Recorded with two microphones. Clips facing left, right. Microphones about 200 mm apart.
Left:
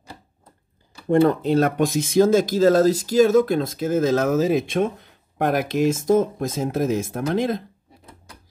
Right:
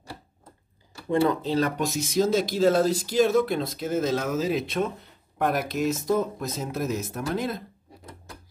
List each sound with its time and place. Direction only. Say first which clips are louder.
1.0 s speech: left 6 dB; 55° left (ahead or behind)